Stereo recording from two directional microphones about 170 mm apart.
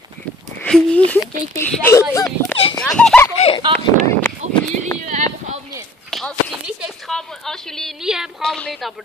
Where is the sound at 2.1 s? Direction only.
20° left (ahead or behind).